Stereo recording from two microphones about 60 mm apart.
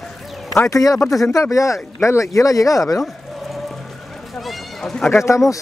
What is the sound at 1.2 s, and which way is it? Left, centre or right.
Speech, left.